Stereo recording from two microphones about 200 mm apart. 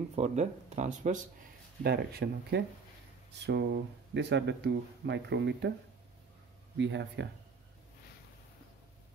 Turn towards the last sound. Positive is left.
turn(degrees=-60)  # may be behind; listen again after turning